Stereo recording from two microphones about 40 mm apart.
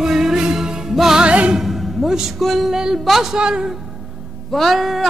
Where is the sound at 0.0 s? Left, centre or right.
Centre.